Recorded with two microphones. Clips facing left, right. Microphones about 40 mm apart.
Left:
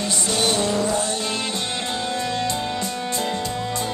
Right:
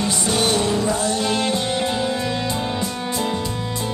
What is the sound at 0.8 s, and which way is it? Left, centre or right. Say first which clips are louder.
Music: right 2 dB; centre.